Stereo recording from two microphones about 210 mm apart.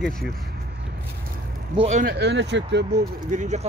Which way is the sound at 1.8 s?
35° right (ahead or behind).